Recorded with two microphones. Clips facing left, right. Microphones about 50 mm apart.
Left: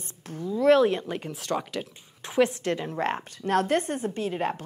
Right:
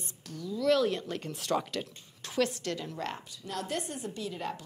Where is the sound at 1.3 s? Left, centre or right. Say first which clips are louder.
Even; centre.